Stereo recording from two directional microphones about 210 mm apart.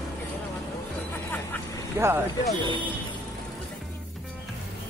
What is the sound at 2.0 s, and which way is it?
Speech, 15° right (ahead or behind).